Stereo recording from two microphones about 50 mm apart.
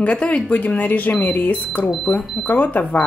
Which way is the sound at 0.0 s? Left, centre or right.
Left.